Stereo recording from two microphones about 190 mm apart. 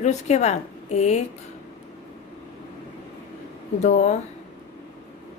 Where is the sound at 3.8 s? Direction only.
40° left (ahead or behind).